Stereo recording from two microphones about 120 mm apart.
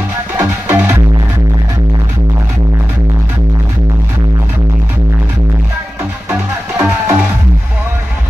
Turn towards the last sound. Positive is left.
turn(degrees=-20)  # may be behind; listen again after turning